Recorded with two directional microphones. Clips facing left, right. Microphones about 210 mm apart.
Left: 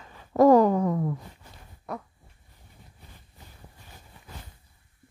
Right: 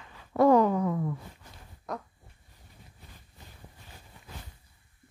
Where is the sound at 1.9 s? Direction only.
10° left (ahead or behind).